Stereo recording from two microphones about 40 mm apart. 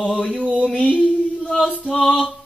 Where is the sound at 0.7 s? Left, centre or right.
Left.